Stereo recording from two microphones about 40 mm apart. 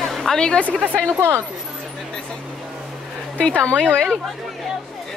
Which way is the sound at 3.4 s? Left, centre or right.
Left.